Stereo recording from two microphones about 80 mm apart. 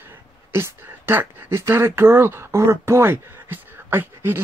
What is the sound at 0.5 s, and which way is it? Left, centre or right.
Speech, right.